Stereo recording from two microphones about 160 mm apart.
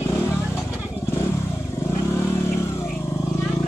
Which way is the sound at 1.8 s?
15° left (ahead or behind).